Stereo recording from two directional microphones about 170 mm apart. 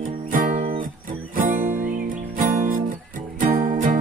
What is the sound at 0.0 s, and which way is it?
Music, 55° right (ahead or behind).